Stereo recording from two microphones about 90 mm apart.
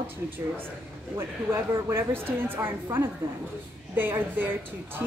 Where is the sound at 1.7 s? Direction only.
30° right (ahead or behind).